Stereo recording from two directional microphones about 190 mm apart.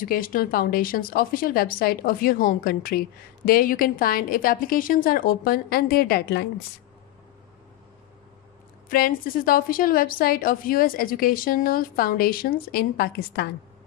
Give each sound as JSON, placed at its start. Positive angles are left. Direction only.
{"t": 0.0, "sound": "speech", "side_deg": 45}
{"t": 8.8, "sound": "speech", "side_deg": 50}